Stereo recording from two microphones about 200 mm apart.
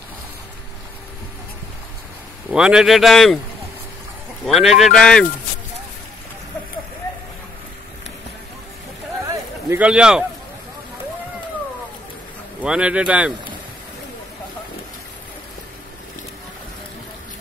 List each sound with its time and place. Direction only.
2.5 s speech: 5° right (ahead or behind)
4.5 s speech: centre (ahead or behind)
9.7 s speech: 5° right (ahead or behind)
12.6 s speech: 5° right (ahead or behind)